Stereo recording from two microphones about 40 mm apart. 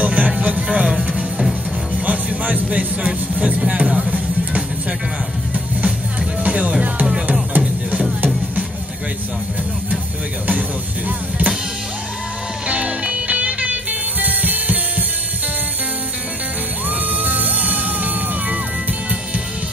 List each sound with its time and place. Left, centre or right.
0.0 s music: right
2.0 s music: right
3.1 s speech: right
3.8 s music: centre
6.4 s music: right
11.1 s music: right
12.6 s music: right
17.2 s music: right